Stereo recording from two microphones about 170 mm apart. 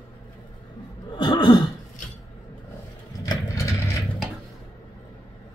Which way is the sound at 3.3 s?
20° left (ahead or behind).